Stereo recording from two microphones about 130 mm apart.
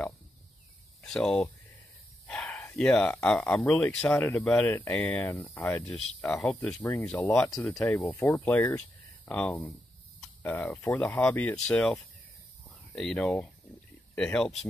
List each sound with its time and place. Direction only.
1.0 s speech: 5° left (ahead or behind)
4.2 s speech: 20° left (ahead or behind); by 12.0 s 5° left (ahead or behind)
12.6 s cricket: 5° left (ahead or behind)
14.1 s speech: 5° left (ahead or behind)